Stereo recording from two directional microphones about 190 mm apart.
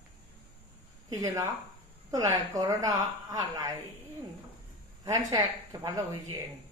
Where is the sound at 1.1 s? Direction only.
20° right (ahead or behind).